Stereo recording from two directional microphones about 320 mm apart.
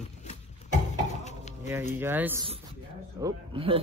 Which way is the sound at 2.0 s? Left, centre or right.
Centre.